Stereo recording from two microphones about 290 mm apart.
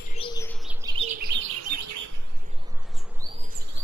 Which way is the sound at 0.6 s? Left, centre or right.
Centre.